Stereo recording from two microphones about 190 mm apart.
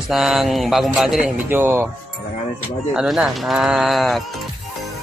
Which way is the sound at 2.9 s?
5° right (ahead or behind).